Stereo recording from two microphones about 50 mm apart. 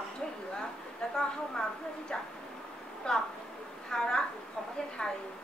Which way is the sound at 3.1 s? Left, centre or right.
Centre.